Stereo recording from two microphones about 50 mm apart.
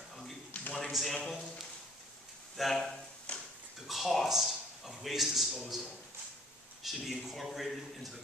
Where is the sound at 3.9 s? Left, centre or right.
Centre.